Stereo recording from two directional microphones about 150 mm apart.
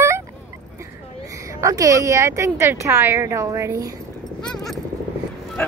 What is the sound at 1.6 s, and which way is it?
A woman's voice, 20° right (ahead or behind).